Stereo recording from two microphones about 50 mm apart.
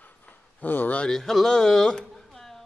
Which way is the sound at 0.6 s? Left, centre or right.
Left.